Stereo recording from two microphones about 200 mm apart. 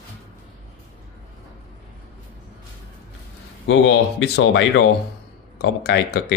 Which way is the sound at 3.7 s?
65° left (ahead or behind).